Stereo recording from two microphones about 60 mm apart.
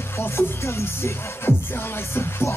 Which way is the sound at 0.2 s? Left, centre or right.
Left.